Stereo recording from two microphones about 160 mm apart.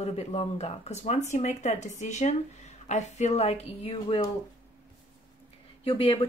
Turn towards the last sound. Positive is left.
turn(degrees=35)  # may be behind; listen again after turning